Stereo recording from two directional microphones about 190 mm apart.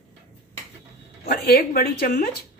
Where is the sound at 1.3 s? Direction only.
50° left (ahead or behind).